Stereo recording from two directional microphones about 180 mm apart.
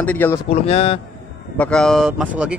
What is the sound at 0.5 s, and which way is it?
Speech, 35° left (ahead or behind).